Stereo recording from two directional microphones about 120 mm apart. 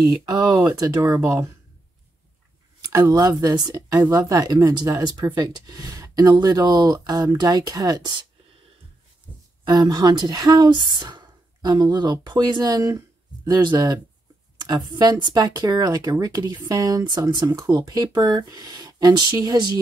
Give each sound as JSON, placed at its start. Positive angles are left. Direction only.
{"t": 0.0, "sound": "speech", "side_deg": -30}
{"t": 2.9, "sound": "speech", "side_deg": -30}
{"t": 9.7, "sound": "speech", "side_deg": -35}